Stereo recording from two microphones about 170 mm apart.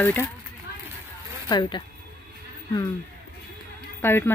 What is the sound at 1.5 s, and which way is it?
Speech, 25° left (ahead or behind).